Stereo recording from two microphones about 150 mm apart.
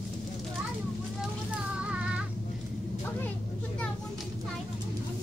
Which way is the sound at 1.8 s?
10° right (ahead or behind).